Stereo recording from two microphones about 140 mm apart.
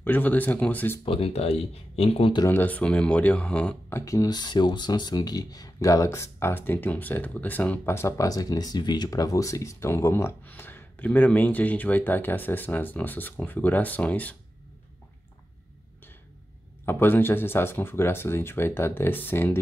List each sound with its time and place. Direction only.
0.0 s speech: 10° left (ahead or behind)
1.0 s speech: 40° left (ahead or behind)
2.4 s speech: 15° left (ahead or behind)
4.0 s speech: 25° left (ahead or behind)
16.8 s speech: 15° left (ahead or behind)